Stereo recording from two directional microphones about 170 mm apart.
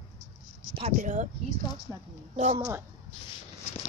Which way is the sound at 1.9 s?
20° right (ahead or behind).